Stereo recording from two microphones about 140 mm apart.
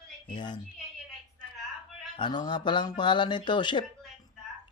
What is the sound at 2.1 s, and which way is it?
Speech, 35° left (ahead or behind).